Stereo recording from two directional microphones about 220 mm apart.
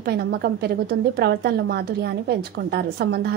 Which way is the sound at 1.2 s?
45° right (ahead or behind).